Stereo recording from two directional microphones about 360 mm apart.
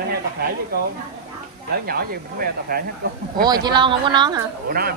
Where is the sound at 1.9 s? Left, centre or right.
Right.